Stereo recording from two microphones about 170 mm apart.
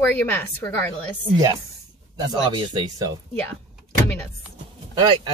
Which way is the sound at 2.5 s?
25° right (ahead or behind).